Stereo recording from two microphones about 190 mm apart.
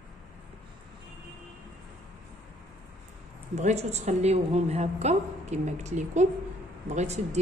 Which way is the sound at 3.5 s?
35° right (ahead or behind).